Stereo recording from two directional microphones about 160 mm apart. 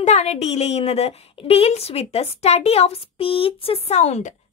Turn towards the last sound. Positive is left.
turn(degrees=45)  # may be behind; listen again after turning